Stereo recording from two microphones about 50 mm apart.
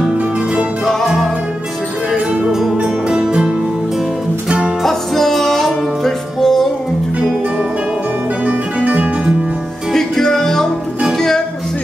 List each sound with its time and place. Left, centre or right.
1.0 s music: centre
2.5 s music: centre; by 4.7 s right
4.8 s music: centre
8.5 s music: right
9.9 s music: centre